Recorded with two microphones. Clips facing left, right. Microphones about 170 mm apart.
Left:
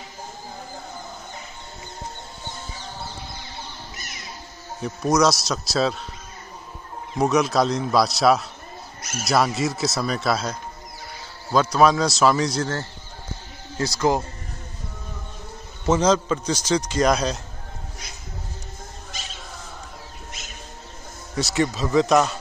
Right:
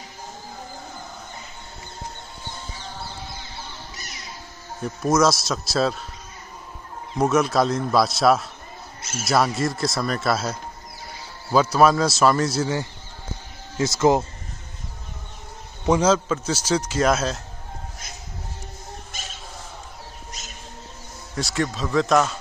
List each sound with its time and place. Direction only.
4.8 s speech: centre (ahead or behind)
7.2 s speech: centre (ahead or behind)
13.7 s speech: 20° right (ahead or behind)
15.8 s a man's voice: 10° right (ahead or behind)
21.4 s speech: centre (ahead or behind)